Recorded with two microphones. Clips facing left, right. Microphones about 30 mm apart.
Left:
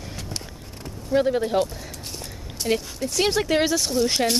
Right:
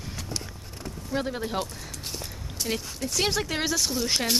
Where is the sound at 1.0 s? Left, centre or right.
Centre.